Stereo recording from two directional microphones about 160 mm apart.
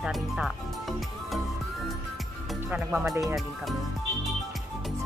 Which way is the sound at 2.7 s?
5° right (ahead or behind).